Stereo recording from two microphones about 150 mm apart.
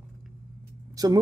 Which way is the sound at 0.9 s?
25° right (ahead or behind).